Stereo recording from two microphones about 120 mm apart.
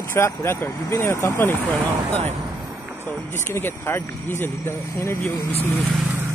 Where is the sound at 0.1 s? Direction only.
20° left (ahead or behind).